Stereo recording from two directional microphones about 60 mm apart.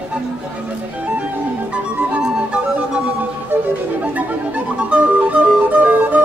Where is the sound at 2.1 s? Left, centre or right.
Right.